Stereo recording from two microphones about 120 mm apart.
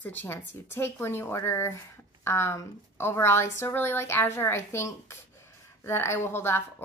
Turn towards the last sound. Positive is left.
turn(degrees=20)  # may be behind; listen again after turning